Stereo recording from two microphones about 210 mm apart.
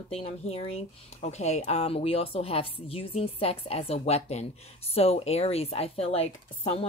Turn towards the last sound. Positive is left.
turn(degrees=30)  # may be behind; listen again after turning